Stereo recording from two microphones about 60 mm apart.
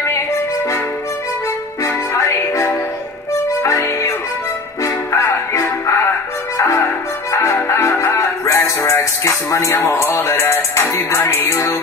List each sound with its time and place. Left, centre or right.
2.1 s music: left
7.3 s music: left
11.1 s music: left